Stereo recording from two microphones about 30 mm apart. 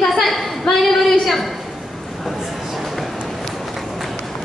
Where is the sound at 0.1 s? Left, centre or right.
Centre.